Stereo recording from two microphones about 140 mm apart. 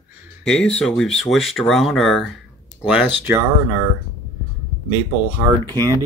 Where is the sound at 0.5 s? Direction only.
5° left (ahead or behind); by 3.4 s 15° right (ahead or behind).